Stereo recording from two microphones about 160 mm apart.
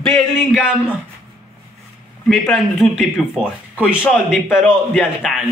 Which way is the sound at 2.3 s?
Centre (ahead or behind).